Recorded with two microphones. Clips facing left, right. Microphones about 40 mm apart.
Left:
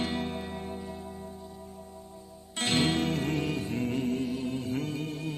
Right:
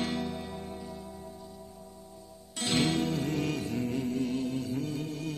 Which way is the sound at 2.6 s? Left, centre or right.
Left.